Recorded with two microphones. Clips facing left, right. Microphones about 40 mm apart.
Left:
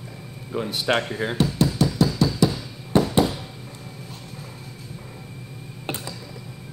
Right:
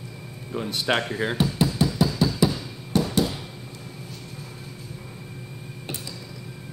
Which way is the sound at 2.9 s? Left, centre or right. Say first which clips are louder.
Left 4 dB; left.